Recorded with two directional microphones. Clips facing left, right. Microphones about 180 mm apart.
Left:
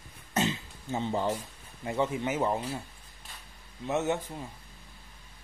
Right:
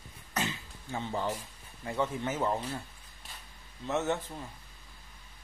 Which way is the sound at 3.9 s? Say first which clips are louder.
Left 2 dB; 15° left (ahead or behind).